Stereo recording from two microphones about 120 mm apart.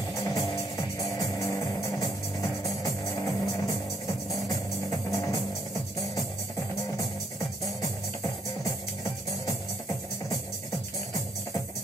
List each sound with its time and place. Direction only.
0.2 s music: 25° left (ahead or behind)
5.1 s music: 30° left (ahead or behind)